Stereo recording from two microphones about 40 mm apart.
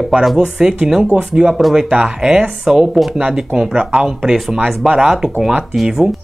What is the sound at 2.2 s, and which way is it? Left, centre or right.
Speech, centre.